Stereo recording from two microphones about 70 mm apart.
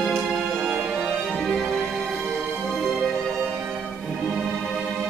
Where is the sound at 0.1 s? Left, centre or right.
Centre.